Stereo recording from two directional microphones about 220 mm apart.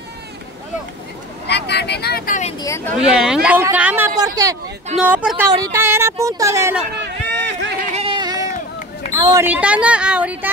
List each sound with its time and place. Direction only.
1.5 s speech: 50° left (ahead or behind)
2.6 s speech: 10° left (ahead or behind)
3.1 s speech: 5° right (ahead or behind)
7.0 s a sound: 55° right (ahead or behind)
7.9 s a sound: 25° right (ahead or behind)
8.5 s run: 35° left (ahead or behind)
9.1 s speech: 15° right (ahead or behind)